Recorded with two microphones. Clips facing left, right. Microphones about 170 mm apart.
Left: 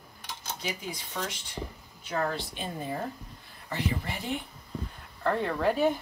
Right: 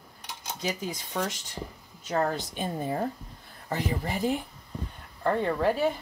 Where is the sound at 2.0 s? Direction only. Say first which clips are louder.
Right 3 dB; 45° right (ahead or behind).